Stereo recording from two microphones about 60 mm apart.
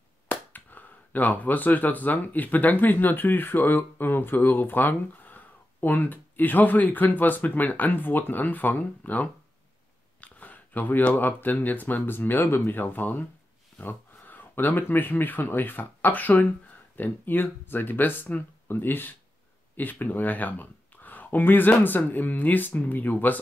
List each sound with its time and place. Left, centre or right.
0.3 s speech: left
10.2 s a sound: left
11.1 s speech: left